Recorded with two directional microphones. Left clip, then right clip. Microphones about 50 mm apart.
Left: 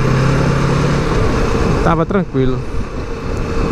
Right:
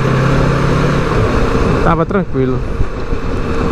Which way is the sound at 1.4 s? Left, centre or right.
Left.